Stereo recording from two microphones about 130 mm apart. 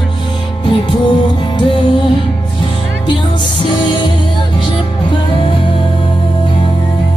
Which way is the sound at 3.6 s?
35° left (ahead or behind).